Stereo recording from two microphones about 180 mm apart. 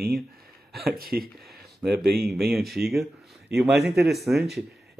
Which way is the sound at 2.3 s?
Centre (ahead or behind).